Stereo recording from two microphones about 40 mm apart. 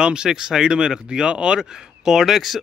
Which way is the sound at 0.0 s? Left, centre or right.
Centre.